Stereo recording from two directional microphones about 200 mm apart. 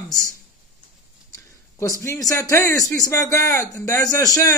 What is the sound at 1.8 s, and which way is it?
A man's voice, 15° left (ahead or behind).